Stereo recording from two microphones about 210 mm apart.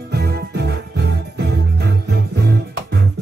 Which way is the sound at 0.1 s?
50° right (ahead or behind).